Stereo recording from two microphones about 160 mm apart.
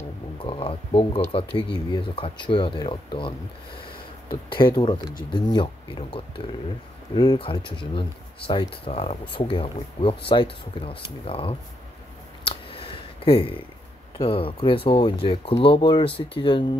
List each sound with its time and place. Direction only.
0.4 s speech: 35° left (ahead or behind)
12.4 s a sound: 35° left (ahead or behind)
14.1 s speech: 35° left (ahead or behind)